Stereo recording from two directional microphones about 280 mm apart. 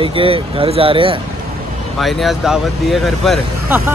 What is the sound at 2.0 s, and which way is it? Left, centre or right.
Speech, centre.